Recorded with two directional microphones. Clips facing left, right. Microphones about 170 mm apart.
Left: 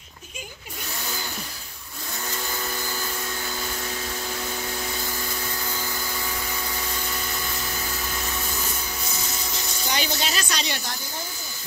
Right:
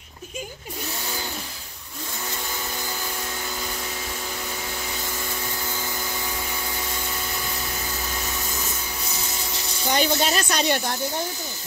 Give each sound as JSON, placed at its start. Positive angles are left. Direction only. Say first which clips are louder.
{"t": 9.9, "sound": "speech", "louder": "right 6 dB", "side_deg": -50}